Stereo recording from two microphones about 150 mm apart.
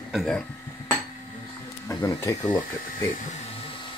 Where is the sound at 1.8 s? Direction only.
20° left (ahead or behind).